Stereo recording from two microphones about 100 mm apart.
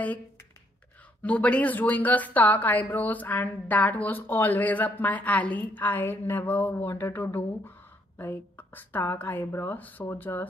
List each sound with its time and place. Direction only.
1.2 s a woman's voice: 15° left (ahead or behind)